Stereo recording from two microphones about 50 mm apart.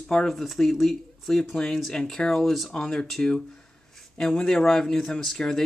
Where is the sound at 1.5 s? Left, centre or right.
Centre.